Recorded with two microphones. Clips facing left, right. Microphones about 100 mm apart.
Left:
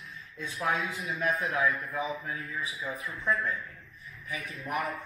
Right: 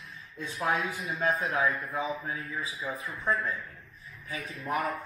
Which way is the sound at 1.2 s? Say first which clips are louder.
Right 1 dB; 30° right (ahead or behind).